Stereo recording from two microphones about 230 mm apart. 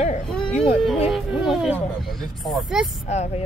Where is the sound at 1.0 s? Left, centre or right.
Centre.